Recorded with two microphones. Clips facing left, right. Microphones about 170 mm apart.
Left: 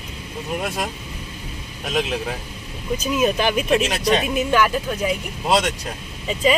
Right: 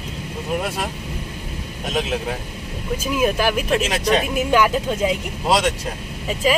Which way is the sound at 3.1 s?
5° right (ahead or behind).